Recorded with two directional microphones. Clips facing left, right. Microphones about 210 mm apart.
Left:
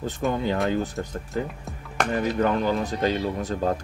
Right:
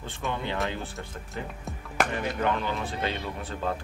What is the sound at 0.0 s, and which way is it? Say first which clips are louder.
Speech: left 7 dB; 40° left (ahead or behind).